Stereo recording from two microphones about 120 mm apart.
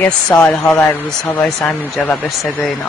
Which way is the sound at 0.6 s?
20° left (ahead or behind).